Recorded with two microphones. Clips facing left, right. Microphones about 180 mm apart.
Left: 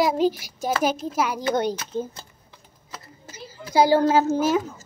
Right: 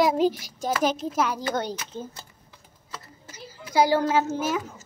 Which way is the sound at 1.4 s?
15° left (ahead or behind).